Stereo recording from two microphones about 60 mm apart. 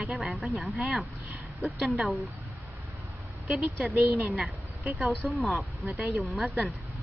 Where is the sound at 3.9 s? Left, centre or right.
Right.